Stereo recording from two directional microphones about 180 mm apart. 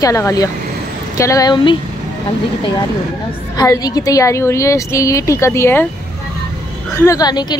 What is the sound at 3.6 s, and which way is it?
Speech, 20° left (ahead or behind).